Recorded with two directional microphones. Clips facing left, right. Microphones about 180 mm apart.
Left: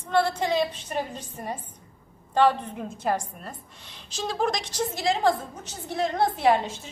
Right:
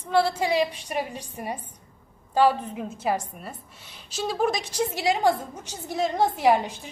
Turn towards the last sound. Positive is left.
turn(degrees=-15)  # may be behind; listen again after turning